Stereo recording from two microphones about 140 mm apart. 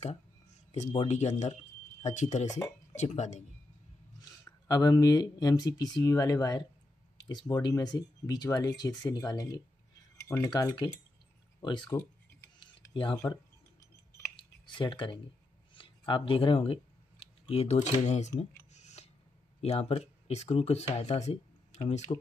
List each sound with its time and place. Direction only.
1.0 s speech: 55° left (ahead or behind)
4.2 s speech: 25° left (ahead or behind)
11.9 s speech: 20° left (ahead or behind)
12.5 s mechanisms: 35° left (ahead or behind)
13.2 s a sound: 25° left (ahead or behind)
14.3 s a sound: 35° left (ahead or behind)
15.7 s speech: 40° left (ahead or behind); by 18.3 s 55° left (ahead or behind)
18.4 s a sound: 55° left (ahead or behind)
19.6 s speech: 45° left (ahead or behind)